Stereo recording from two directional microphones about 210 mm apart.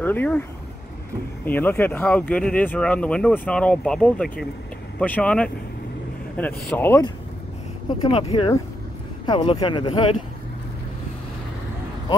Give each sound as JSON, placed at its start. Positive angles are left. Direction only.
{"t": 0.0, "sound": "speech", "side_deg": 10}
{"t": 1.4, "sound": "speech", "side_deg": 10}
{"t": 8.1, "sound": "speech", "side_deg": 30}